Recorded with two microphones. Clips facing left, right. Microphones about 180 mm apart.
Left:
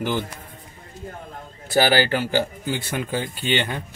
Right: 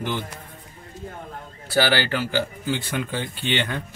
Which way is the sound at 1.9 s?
40° left (ahead or behind).